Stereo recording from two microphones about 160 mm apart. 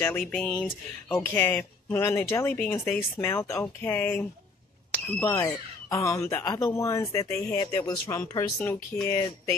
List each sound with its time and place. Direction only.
0.2 s music: 5° left (ahead or behind)
1.4 s speech: 15° left (ahead or behind)